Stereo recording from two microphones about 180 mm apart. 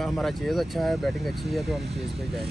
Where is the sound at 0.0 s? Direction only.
Centre (ahead or behind).